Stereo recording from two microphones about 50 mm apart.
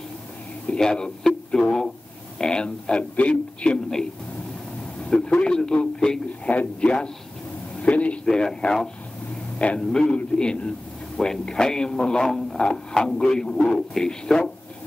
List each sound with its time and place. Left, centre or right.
0.7 s speech: centre
5.0 s a sound: centre
5.4 s speech: centre
6.4 s a man's voice: left
8.3 s a man's voice: centre